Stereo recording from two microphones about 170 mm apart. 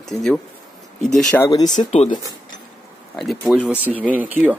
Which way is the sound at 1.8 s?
45° left (ahead or behind).